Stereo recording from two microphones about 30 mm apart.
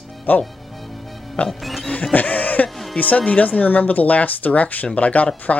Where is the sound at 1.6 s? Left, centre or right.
Centre.